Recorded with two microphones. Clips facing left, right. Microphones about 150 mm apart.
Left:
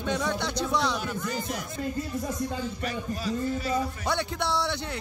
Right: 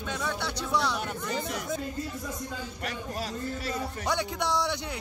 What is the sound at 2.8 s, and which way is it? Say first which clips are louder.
Speech: even; 70° right (ahead or behind).